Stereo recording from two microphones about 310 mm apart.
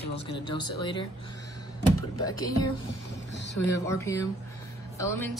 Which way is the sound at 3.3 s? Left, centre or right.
Left.